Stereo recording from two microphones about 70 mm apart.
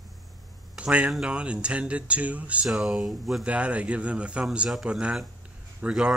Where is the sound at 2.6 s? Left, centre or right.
Centre.